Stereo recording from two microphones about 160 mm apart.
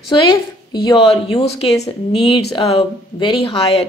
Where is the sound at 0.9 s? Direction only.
40° left (ahead or behind).